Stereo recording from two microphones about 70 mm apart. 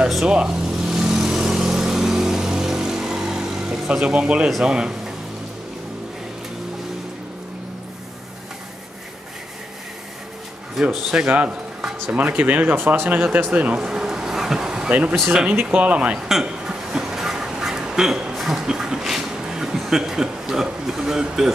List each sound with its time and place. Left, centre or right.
0.3 s vehicle: centre
4.5 s speech: centre
11.2 s speech: centre
14.9 s speech: centre
16.2 s speech: centre
16.4 s duck: centre